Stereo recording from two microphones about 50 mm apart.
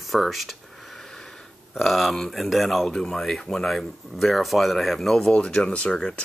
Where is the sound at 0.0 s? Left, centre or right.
Centre.